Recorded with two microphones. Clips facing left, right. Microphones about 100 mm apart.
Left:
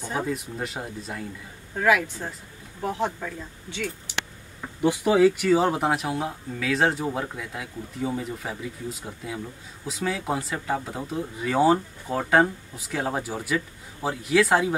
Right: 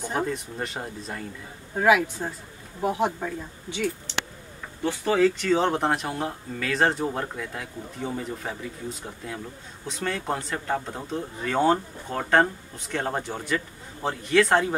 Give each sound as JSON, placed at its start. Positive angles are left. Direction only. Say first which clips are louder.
{"t": 0.1, "sound": "speech", "louder": "left 1 dB", "side_deg": 0}
{"t": 1.8, "sound": "speech", "louder": "right 2 dB", "side_deg": -15}
{"t": 4.1, "sound": "a sound", "louder": "right 1 dB", "side_deg": 10}
{"t": 4.8, "sound": "speech", "louder": "left 3 dB", "side_deg": 15}